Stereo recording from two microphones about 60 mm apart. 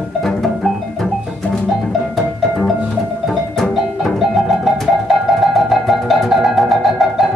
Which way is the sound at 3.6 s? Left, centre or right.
Centre.